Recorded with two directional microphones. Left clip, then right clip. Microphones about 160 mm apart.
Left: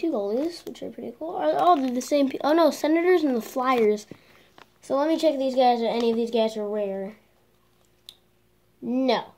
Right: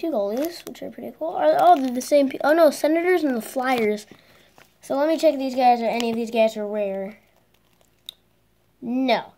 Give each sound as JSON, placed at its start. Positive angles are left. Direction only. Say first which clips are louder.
{"t": 0.0, "sound": "speech", "louder": "right 2 dB", "side_deg": -20}
{"t": 1.7, "sound": "a woman's voice", "louder": "right 4 dB", "side_deg": -30}